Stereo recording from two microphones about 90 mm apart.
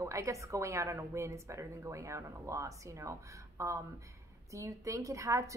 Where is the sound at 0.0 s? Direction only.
35° right (ahead or behind).